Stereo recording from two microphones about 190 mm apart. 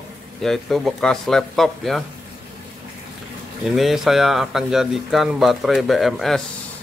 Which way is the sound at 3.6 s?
Centre (ahead or behind).